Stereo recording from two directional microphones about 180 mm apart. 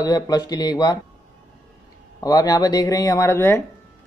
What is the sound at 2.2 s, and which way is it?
Speech, 20° left (ahead or behind).